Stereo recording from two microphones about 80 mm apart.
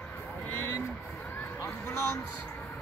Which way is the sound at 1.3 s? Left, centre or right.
Left.